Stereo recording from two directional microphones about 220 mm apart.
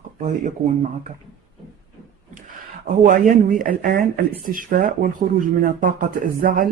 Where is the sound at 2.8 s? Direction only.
35° right (ahead or behind).